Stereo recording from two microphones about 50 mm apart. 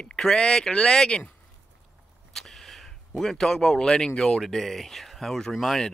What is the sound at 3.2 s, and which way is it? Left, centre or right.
Speech, centre.